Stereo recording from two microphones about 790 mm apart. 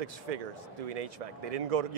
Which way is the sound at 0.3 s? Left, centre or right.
Right.